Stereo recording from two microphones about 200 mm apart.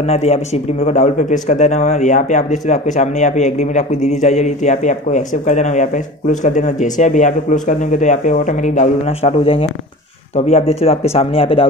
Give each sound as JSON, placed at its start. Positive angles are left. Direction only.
{"t": 0.0, "sound": "a man's voice", "side_deg": 35}